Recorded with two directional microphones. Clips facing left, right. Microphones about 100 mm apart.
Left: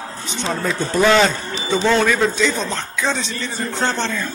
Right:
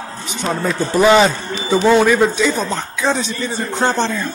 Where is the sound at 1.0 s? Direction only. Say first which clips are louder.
Right 3 dB; 15° right (ahead or behind).